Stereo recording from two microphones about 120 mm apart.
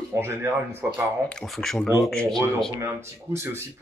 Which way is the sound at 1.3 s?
5° left (ahead or behind).